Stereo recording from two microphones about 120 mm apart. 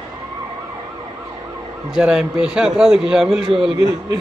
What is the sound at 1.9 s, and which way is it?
A man's voice, 5° right (ahead or behind).